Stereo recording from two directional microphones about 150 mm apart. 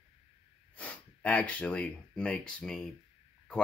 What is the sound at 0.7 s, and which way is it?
Speech, 10° left (ahead or behind).